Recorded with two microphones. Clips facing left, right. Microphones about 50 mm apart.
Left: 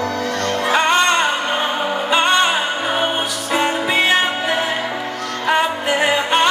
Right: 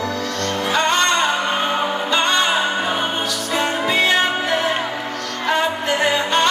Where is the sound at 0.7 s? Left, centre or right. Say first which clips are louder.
Left 2 dB; centre.